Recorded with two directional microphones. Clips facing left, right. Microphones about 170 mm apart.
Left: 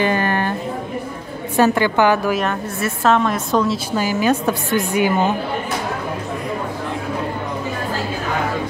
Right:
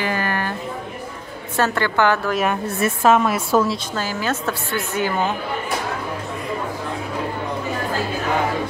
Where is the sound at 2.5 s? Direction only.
10° right (ahead or behind).